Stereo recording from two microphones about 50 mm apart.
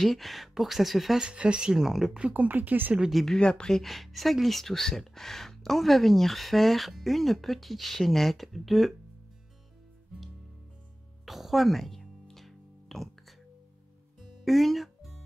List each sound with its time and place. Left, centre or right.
0.0 s speech: centre
1.2 s speech: centre
1.8 s speech: centre
2.1 s speech: right
2.4 s speech: right
3.3 s speech: centre
3.8 s speech: centre
11.2 s music: centre
14.4 s music: centre